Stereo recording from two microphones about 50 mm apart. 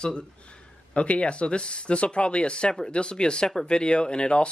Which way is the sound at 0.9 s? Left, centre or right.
Left.